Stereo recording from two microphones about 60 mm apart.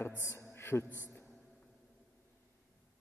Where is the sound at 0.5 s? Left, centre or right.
Left.